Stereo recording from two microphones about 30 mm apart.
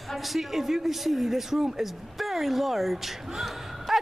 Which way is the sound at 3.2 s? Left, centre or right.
Centre.